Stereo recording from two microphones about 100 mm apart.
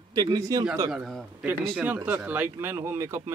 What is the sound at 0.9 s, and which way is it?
Speech, centre (ahead or behind).